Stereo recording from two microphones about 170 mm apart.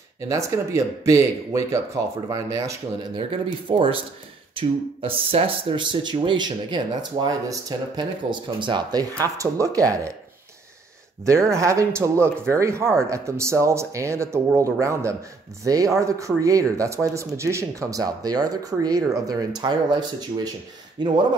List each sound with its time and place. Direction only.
0.3 s speech: 15° right (ahead or behind)
3.2 s speech: 30° right (ahead or behind)
11.2 s speech: 15° right (ahead or behind)